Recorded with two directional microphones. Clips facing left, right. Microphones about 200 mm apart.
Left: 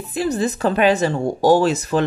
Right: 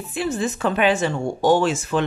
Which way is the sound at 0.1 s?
40° left (ahead or behind).